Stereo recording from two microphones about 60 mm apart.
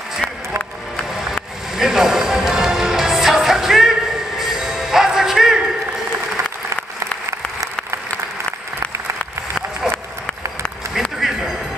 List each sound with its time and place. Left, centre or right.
1.3 s music: centre
7.2 s applause: right
9.8 s applause: centre
11.1 s a sound: centre